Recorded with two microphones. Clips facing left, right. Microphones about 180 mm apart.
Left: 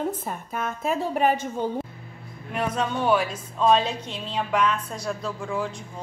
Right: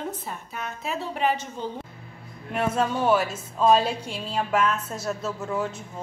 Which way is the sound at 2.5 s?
5° right (ahead or behind).